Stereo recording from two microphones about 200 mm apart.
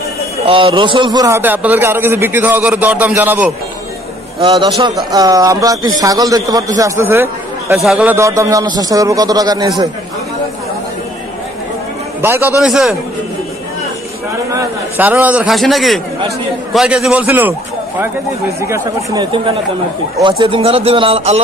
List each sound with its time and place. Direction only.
0.5 s a man's voice: 25° right (ahead or behind); by 3.5 s 10° right (ahead or behind)
4.4 s a man's voice: 25° right (ahead or behind)
12.2 s a man's voice: 10° right (ahead or behind)
14.5 s a man's voice: 10° right (ahead or behind)
18.6 s a man's voice: 15° right (ahead or behind)